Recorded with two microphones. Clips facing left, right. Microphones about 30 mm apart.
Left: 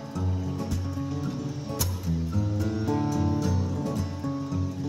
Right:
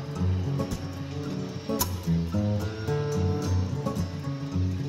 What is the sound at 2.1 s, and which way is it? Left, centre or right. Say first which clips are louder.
Music: right 2 dB; right.